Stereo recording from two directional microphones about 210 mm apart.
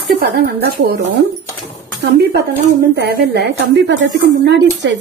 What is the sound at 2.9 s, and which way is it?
A woman's voice, 50° right (ahead or behind).